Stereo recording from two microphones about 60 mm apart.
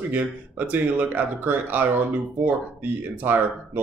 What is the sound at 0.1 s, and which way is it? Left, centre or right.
Speech, right.